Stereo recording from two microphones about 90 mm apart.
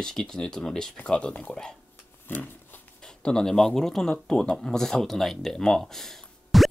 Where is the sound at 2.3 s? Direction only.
20° left (ahead or behind).